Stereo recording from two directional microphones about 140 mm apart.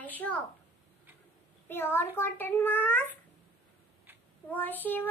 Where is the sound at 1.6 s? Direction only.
15° left (ahead or behind).